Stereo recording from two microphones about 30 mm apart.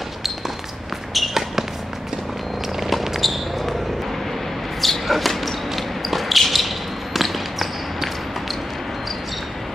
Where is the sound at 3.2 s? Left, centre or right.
Centre.